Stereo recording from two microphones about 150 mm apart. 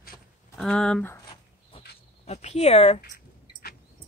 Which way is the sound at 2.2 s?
45° left (ahead or behind).